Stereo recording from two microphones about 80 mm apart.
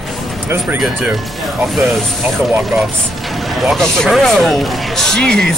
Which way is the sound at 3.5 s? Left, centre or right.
Centre.